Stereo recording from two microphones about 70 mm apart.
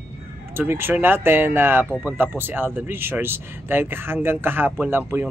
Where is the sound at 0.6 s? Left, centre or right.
Right.